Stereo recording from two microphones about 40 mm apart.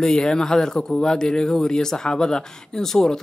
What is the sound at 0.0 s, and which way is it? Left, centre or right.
Speech, centre.